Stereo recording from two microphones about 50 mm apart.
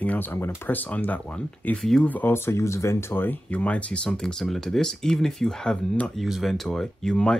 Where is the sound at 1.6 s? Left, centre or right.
Left.